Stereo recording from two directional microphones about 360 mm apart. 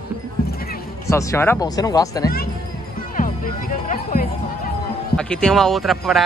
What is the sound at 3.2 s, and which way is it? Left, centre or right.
Speech, left.